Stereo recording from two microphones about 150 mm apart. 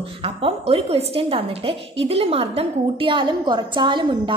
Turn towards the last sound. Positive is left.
turn(degrees=-30)  # may be behind; listen again after turning